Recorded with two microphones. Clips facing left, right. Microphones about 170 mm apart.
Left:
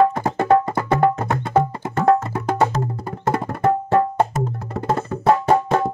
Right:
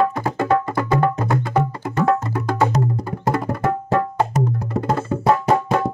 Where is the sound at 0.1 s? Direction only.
25° left (ahead or behind).